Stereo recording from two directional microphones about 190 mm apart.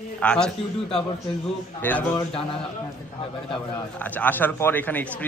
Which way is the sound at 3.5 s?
10° left (ahead or behind).